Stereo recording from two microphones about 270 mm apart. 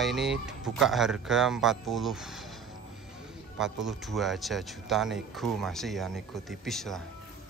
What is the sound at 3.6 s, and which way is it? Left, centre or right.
Speech, centre.